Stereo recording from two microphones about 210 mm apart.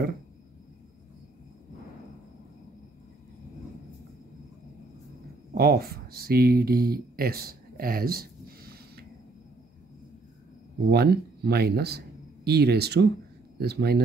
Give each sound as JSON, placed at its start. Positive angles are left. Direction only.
{"t": 5.5, "sound": "speech", "side_deg": -45}
{"t": 10.9, "sound": "speech", "side_deg": -50}